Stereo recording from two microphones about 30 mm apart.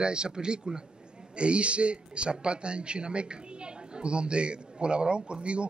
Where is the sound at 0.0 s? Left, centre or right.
Right.